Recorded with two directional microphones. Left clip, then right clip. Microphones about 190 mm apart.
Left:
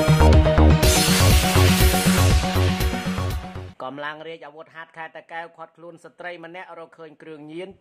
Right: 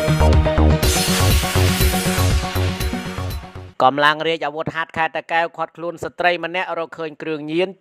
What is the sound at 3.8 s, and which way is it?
Speech, 50° right (ahead or behind).